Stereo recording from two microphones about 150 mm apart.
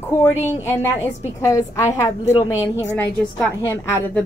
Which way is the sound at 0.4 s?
15° left (ahead or behind).